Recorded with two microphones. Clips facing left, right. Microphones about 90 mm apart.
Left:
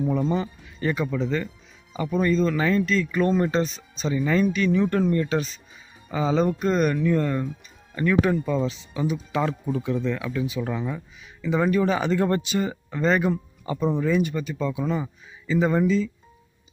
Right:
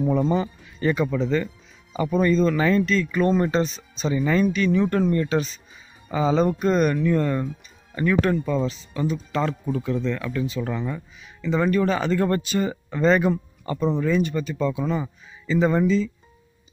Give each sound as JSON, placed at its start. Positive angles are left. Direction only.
{"t": 0.8, "sound": "speech", "side_deg": 0}
{"t": 8.2, "sound": "speech", "side_deg": 10}
{"t": 12.6, "sound": "speech", "side_deg": 5}